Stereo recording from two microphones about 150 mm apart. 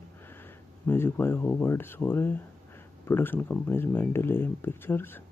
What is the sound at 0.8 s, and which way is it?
Speech, 15° left (ahead or behind).